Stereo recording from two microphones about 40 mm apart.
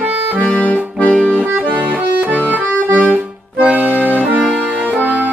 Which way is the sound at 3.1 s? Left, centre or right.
Right.